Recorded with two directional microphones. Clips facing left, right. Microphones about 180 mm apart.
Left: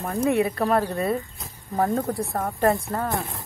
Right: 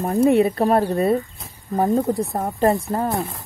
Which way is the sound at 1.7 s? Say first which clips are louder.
Right 5 dB; 20° right (ahead or behind).